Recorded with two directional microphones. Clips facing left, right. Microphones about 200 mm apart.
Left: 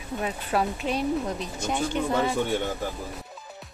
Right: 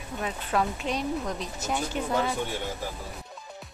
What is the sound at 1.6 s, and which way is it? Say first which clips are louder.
Speech: left 3 dB; 5° right (ahead or behind).